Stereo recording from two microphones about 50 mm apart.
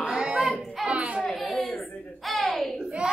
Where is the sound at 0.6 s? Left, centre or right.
Centre.